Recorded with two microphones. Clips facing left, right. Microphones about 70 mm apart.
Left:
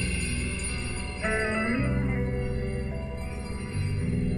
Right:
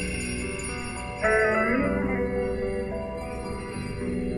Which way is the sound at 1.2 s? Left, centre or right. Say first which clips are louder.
Right 6 dB; centre.